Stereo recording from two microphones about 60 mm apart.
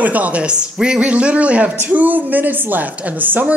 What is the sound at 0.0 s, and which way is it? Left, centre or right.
A woman's voice, right.